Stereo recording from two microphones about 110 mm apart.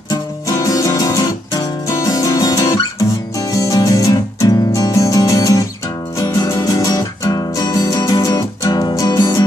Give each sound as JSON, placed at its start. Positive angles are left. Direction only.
{"t": 0.1, "sound": "music", "side_deg": 30}
{"t": 6.1, "sound": "guitar", "side_deg": 30}